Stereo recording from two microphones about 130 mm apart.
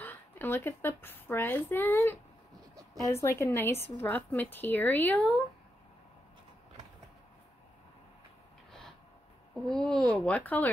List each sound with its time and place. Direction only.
0.0 s a woman's voice: 15° left (ahead or behind)
9.7 s a woman's voice: 5° left (ahead or behind)